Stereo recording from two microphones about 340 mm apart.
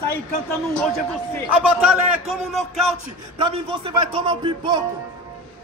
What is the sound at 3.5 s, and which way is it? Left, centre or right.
Speech, centre.